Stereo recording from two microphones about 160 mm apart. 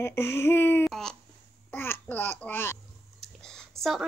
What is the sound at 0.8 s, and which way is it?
Babbling, 5° left (ahead or behind).